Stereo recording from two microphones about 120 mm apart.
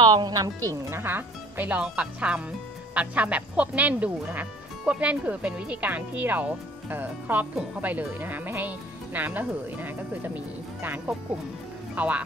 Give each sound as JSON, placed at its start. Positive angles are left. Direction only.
{"t": 0.0, "sound": "speech", "side_deg": -35}